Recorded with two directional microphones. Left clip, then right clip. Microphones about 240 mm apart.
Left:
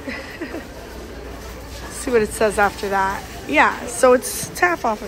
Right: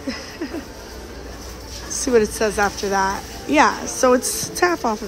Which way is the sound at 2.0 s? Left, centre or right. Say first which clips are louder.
Even; centre.